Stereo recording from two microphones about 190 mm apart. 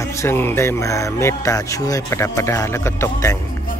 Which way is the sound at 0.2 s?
10° left (ahead or behind).